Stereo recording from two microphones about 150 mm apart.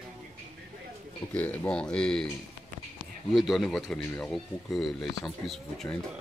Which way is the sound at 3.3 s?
Centre (ahead or behind).